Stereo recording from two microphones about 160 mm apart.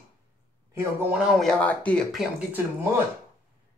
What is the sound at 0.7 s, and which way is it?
Speech, 15° right (ahead or behind).